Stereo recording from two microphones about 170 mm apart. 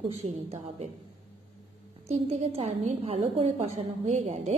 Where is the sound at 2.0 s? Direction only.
35° right (ahead or behind).